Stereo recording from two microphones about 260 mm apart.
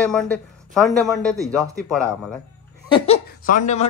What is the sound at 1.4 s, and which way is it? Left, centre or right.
Speech, centre.